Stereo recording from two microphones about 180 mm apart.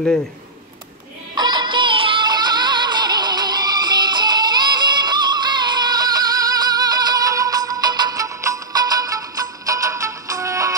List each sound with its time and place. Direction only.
1.3 s music: 25° right (ahead or behind)